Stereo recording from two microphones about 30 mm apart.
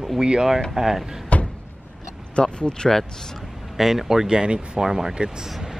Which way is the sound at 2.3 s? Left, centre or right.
Left.